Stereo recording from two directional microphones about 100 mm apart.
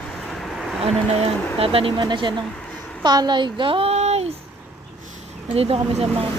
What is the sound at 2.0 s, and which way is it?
A woman's voice, 50° right (ahead or behind).